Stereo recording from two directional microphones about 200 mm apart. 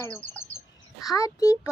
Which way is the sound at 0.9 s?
20° left (ahead or behind).